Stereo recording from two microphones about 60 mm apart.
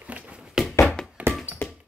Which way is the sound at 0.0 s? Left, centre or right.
Right.